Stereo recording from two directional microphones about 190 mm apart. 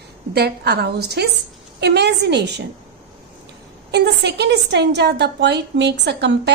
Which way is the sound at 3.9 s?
60° right (ahead or behind).